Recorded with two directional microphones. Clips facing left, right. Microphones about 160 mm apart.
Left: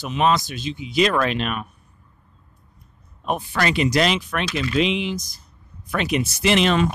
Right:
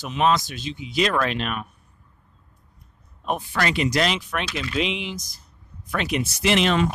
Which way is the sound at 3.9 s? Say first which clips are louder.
Left 3 dB; 10° left (ahead or behind).